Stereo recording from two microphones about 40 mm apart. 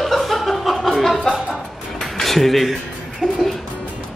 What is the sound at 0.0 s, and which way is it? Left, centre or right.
Chuckle, centre.